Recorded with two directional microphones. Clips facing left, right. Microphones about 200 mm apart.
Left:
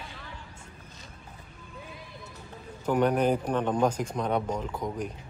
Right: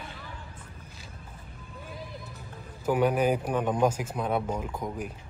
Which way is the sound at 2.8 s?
5° right (ahead or behind).